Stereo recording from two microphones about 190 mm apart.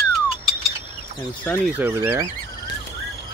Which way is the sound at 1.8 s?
10° right (ahead or behind).